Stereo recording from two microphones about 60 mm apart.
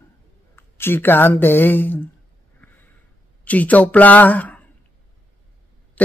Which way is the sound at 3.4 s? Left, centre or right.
Left.